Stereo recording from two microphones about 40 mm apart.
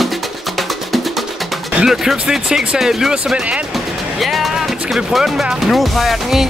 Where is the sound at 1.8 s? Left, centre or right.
Centre.